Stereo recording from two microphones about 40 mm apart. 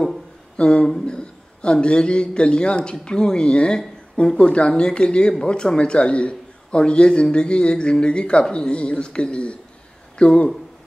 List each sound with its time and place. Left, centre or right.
0.6 s a man's voice: left